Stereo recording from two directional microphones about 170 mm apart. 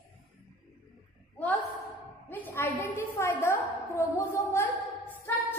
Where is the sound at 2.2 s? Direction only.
10° left (ahead or behind).